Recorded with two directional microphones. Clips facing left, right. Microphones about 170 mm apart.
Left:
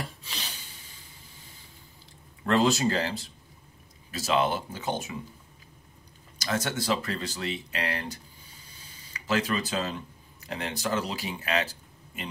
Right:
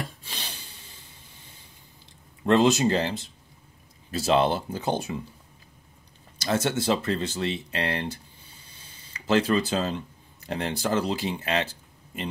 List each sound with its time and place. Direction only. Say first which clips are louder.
2.4 s speech: right 4 dB; 20° right (ahead or behind)
6.3 s speech: right 5 dB; 30° right (ahead or behind)
8.7 s a sound: even; 30° right (ahead or behind)
10.4 s speech: right 4 dB; 30° right (ahead or behind)